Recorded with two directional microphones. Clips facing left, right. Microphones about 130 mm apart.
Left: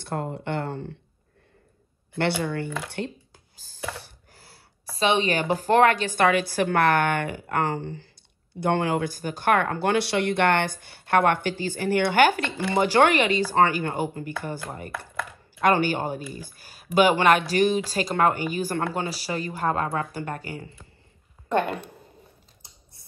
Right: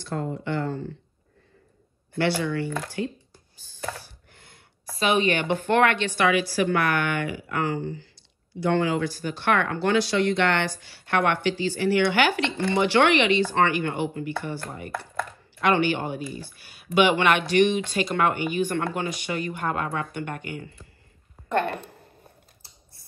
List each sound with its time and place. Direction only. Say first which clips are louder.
0.0 s speech: even; 60° left (ahead or behind)
2.1 s speech: right 1 dB; 55° left (ahead or behind)
4.3 s a sound: left 1 dB; 35° left (ahead or behind)
4.9 s speech: even; 30° left (ahead or behind)
14.9 s chopping: right 2 dB; centre (ahead or behind)
15.6 s speech: left 1 dB; 40° left (ahead or behind)